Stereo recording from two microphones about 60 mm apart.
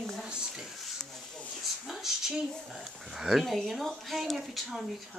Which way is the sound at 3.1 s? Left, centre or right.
Centre.